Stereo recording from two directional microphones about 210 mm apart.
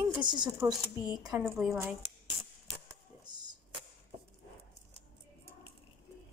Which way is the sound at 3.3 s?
20° right (ahead or behind).